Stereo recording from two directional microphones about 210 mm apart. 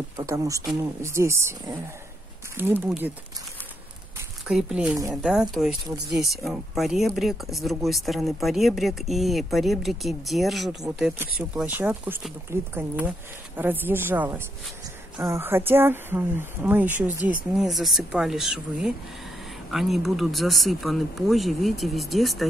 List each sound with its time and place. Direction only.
0.2 s speech: 15° right (ahead or behind)
4.5 s speech: 5° right (ahead or behind)
17.2 s speech: 40° right (ahead or behind)
17.6 s speech: centre (ahead or behind)